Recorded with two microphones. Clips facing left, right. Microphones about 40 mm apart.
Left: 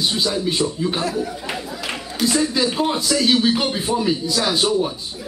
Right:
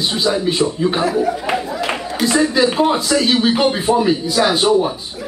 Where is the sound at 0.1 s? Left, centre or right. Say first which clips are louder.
Right 4 dB; right.